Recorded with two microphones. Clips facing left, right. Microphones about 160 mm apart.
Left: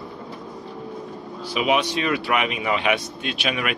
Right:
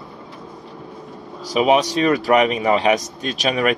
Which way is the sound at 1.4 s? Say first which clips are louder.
Right 5 dB; 40° right (ahead or behind).